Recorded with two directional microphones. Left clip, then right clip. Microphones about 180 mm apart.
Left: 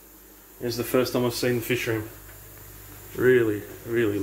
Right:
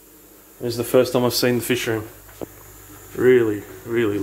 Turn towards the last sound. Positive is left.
turn(degrees=-15)  # may be behind; listen again after turning